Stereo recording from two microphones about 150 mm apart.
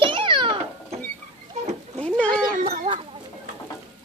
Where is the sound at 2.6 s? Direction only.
60° right (ahead or behind).